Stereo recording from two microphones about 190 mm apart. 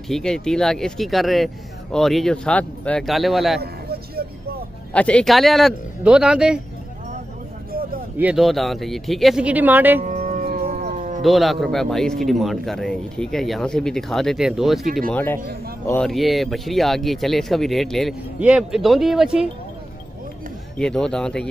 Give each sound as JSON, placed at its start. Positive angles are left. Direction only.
{"t": 0.1, "sound": "a man's voice", "side_deg": 5}
{"t": 3.6, "sound": "vehicle", "side_deg": -55}
{"t": 4.9, "sound": "a man's voice", "side_deg": 5}
{"t": 8.2, "sound": "a man's voice", "side_deg": -5}
{"t": 10.0, "sound": "howl", "side_deg": -35}
{"t": 10.4, "sound": "music", "side_deg": -50}
{"t": 11.2, "sound": "a man's voice", "side_deg": 0}
{"t": 20.7, "sound": "a man's voice", "side_deg": 5}